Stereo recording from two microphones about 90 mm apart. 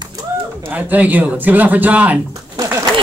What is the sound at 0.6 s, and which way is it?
Speech, 15° right (ahead or behind).